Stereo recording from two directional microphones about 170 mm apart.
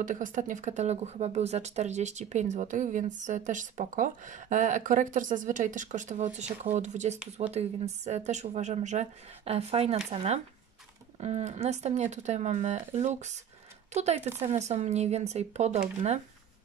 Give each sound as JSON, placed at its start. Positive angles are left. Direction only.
{"t": 0.0, "sound": "speech", "side_deg": -50}